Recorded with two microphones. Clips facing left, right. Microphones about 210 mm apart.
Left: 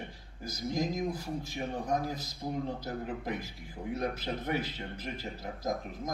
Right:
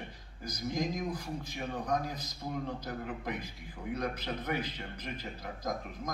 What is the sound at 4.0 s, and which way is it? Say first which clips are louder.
A man's voice: left 2 dB; 25° left (ahead or behind).